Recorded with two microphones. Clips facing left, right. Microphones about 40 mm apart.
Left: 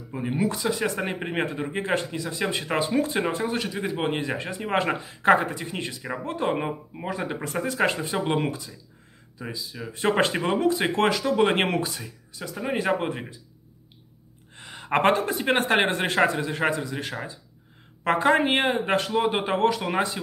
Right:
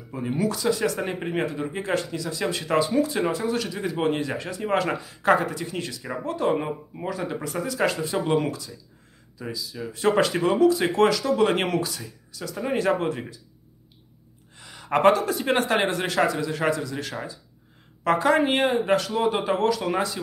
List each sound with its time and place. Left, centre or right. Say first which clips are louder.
0.1 s speech: even; centre
7.4 s speech: left 1 dB; left
14.5 s speech: even; left